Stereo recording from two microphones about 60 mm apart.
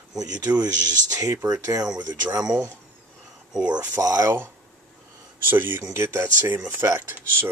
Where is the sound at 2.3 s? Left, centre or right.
Right.